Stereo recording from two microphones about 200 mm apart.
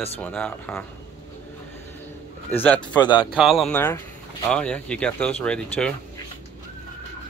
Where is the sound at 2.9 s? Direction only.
20° left (ahead or behind).